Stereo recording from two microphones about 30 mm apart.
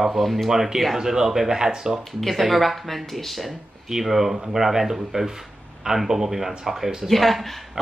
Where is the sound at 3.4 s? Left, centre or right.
Centre.